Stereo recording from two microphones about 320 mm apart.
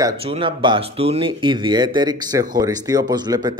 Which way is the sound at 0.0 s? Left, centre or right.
Centre.